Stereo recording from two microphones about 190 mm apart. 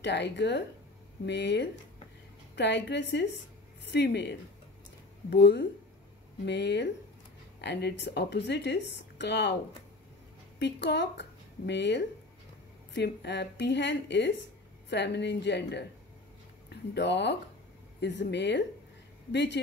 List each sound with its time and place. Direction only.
0.0 s a woman's voice: 65° left (ahead or behind)
10.6 s a woman's voice: 65° left (ahead or behind)